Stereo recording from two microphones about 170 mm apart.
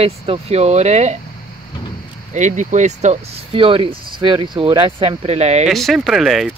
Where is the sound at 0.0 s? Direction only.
35° right (ahead or behind).